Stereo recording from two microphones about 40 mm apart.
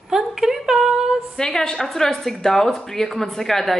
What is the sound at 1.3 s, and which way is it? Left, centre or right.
A woman's voice, centre.